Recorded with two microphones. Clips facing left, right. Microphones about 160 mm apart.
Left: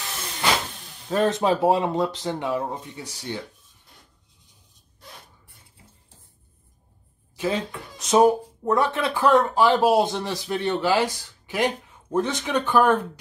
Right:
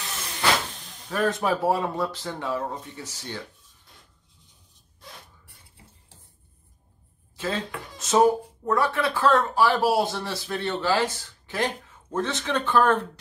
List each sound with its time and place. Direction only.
1.0 s speech: 25° left (ahead or behind)
7.3 s speech: 15° left (ahead or behind)